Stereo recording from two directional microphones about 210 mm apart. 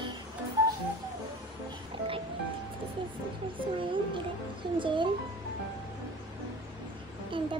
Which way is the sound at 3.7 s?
25° right (ahead or behind).